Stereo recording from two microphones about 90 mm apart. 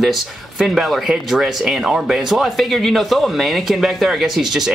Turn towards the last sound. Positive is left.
turn(degrees=-5)  # may be behind; listen again after turning